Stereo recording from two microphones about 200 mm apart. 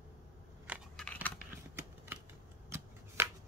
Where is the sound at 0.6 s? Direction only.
5° right (ahead or behind).